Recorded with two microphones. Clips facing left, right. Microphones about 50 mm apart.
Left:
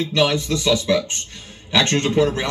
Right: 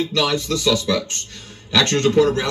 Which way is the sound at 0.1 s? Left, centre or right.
Centre.